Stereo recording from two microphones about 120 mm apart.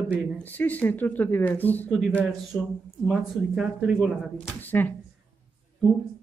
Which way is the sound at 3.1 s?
5° right (ahead or behind).